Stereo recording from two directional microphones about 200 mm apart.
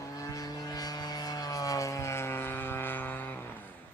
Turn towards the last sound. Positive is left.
turn(degrees=10)  # may be behind; listen again after turning